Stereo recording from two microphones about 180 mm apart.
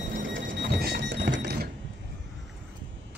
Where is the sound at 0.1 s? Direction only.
90° right; by 1.7 s 65° right (ahead or behind).